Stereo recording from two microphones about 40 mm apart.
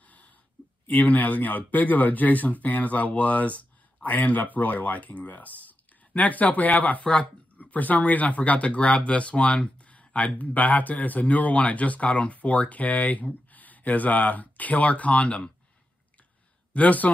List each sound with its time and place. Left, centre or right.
0.0 s a sound: left
1.1 s speech: left
16.7 s speech: left